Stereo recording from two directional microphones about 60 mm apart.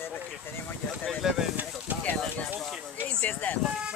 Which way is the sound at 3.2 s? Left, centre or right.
Left.